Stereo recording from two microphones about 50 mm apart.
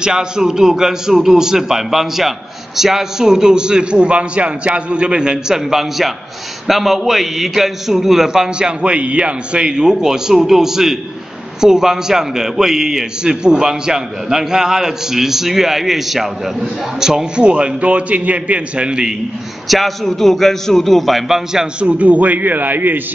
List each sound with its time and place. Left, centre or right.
0.0 s a man's voice: centre
19.7 s a man's voice: centre
21.5 s a man's voice: right